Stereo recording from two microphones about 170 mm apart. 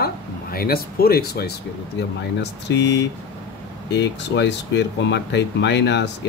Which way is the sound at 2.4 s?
90° left.